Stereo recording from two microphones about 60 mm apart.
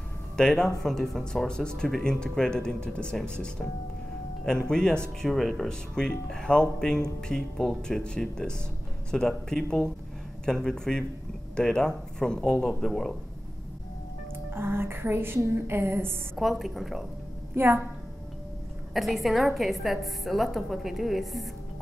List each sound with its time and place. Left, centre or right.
0.4 s speech: centre
14.5 s a woman's voice: right
16.3 s a woman's voice: centre
17.6 s a woman's voice: right
18.9 s a woman's voice: centre